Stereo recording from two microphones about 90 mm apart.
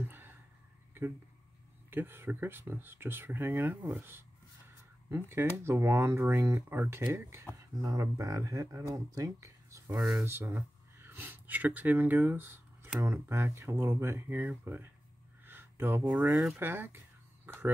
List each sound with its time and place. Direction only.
0.0 s a sound: 25° right (ahead or behind)
1.9 s speech: 25° right (ahead or behind)
10.2 s speech: 25° right (ahead or behind)
15.4 s a sound: 25° right (ahead or behind)
16.5 s speech: 25° right (ahead or behind)
17.5 s fowl: 25° right (ahead or behind)